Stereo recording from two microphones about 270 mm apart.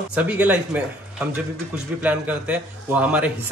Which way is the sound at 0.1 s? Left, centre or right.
Centre.